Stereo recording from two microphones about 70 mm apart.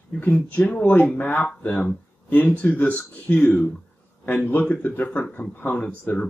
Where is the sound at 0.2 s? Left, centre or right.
Centre.